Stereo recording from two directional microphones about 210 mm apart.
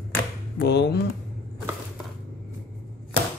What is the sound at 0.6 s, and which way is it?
Mantra, 50° left (ahead or behind).